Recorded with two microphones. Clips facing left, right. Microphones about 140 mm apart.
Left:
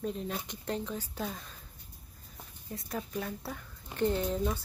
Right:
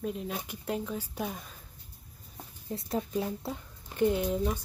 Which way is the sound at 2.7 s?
25° right (ahead or behind).